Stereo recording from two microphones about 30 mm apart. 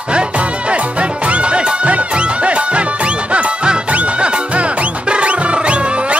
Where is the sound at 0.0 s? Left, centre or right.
Right.